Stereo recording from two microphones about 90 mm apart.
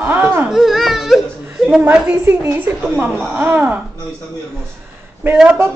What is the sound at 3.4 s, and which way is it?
Speech, 20° right (ahead or behind).